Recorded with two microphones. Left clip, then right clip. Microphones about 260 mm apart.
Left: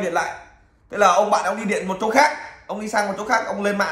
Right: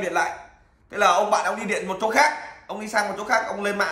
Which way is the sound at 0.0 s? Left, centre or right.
Centre.